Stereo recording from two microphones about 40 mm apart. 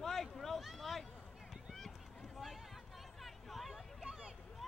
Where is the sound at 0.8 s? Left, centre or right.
Centre.